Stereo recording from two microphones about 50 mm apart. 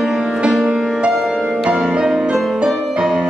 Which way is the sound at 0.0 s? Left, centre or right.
Centre.